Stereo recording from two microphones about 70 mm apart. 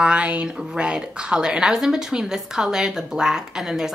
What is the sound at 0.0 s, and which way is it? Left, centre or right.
A woman's voice, centre.